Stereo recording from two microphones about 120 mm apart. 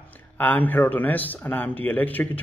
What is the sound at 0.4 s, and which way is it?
A man's voice, 15° left (ahead or behind).